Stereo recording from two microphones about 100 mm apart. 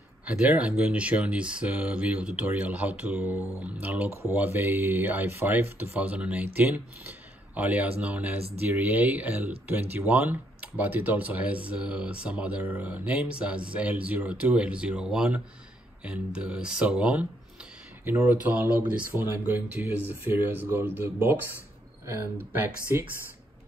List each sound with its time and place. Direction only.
0.2 s speech: 10° right (ahead or behind)